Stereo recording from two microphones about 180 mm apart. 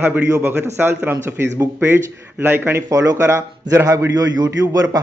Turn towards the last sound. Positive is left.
turn(degrees=-20)  # may be behind; listen again after turning